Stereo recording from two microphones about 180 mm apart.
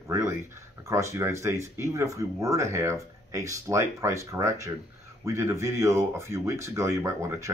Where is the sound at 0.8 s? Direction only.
15° right (ahead or behind).